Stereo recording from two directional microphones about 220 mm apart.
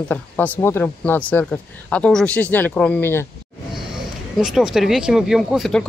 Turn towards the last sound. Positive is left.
turn(degrees=0)  # may be behind; listen again after turning